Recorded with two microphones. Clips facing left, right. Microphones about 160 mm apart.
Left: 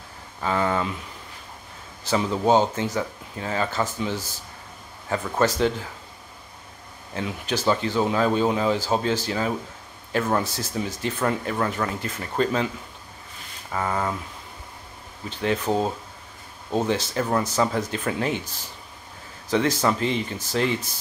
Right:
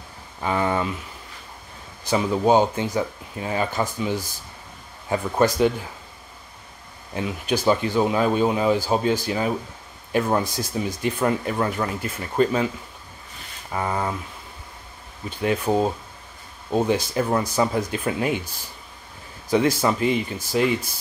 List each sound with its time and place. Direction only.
0.4 s speech: 15° right (ahead or behind)
2.0 s speech: 10° right (ahead or behind)
7.2 s speech: 15° right (ahead or behind)
13.7 s speech: 15° right (ahead or behind)
15.2 s speech: 10° right (ahead or behind)